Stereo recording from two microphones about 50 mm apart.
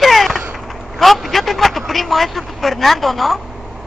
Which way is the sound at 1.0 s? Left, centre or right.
Centre.